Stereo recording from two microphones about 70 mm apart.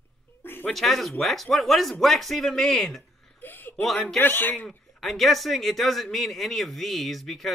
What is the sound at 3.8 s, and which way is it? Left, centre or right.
Speech, centre.